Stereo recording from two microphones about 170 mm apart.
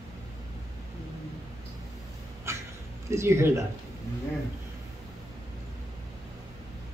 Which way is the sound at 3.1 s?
15° right (ahead or behind).